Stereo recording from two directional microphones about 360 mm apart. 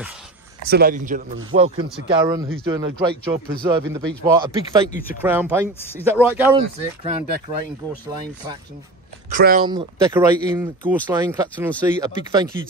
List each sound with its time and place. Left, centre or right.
0.7 s a man's voice: right
9.3 s a man's voice: right
9.7 s a man's voice: centre